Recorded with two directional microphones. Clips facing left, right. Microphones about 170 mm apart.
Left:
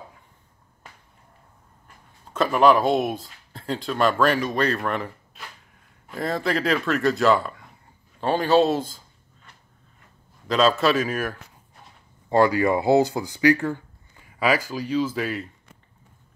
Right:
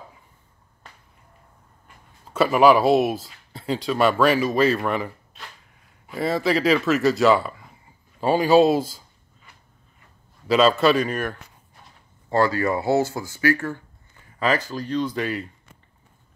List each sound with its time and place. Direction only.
2.3 s speech: 5° right (ahead or behind)
8.2 s a sound: 10° right (ahead or behind)
10.4 s speech: centre (ahead or behind)
12.3 s speech: 15° left (ahead or behind); by 15.5 s centre (ahead or behind)